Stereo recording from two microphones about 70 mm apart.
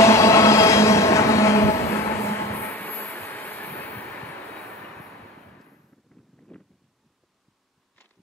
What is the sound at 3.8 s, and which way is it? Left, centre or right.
Train, left.